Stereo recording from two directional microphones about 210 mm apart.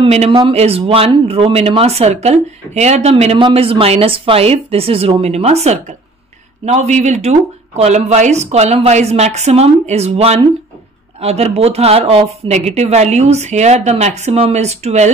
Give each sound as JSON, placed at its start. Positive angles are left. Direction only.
{"t": 0.0, "sound": "speech", "side_deg": -30}